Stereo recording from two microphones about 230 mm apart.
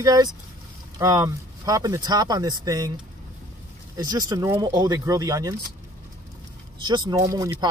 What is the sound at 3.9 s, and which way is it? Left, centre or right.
Speech, centre.